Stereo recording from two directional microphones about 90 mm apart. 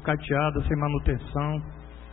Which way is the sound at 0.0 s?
15° left (ahead or behind).